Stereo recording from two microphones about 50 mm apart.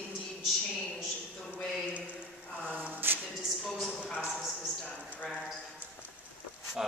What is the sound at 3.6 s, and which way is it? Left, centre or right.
Speech, centre.